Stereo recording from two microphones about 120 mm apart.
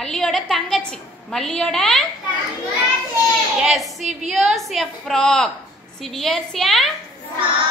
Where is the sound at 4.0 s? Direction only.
75° right (ahead or behind).